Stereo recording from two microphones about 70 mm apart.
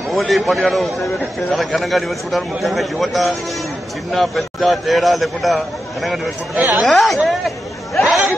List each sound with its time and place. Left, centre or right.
0.1 s a man's voice: centre
6.5 s speech: right
6.9 s a man's voice: centre
7.2 s chatter: centre